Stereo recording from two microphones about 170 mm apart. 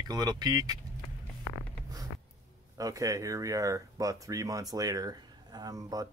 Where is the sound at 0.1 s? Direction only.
25° right (ahead or behind).